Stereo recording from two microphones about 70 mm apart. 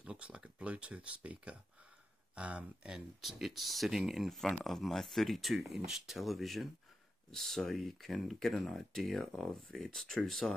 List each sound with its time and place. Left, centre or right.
0.0 s speech: centre
2.9 s speech: centre